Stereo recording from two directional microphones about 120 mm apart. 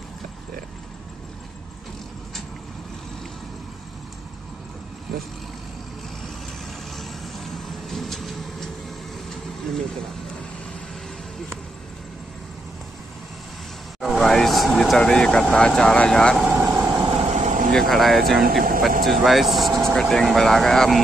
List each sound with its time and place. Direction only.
5.1 s speech: centre (ahead or behind)
7.0 s vehicle: centre (ahead or behind)
14.0 s speech: centre (ahead or behind)
16.5 s vehicle: 5° right (ahead or behind)
17.1 s vehicle: 65° right (ahead or behind); by 17.6 s 80° right
17.6 s speech: centre (ahead or behind)